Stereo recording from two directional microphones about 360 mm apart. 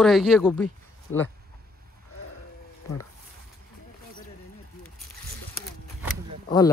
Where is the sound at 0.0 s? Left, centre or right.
Centre.